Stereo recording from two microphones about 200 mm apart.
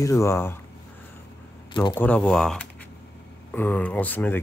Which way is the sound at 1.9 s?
5° left (ahead or behind).